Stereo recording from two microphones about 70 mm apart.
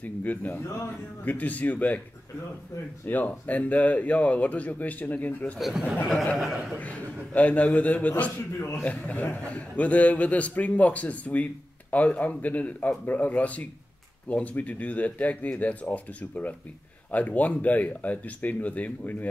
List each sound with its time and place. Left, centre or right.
0.0 s a man's voice: left
3.1 s a man's voice: left
5.6 s speech: centre
6.8 s a man's voice: left